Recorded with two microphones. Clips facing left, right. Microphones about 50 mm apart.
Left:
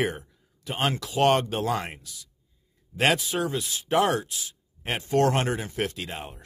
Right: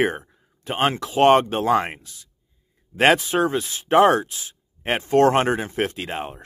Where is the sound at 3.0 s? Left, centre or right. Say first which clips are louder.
Right 7 dB; right.